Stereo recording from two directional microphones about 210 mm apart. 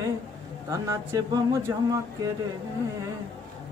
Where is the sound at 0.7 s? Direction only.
15° right (ahead or behind).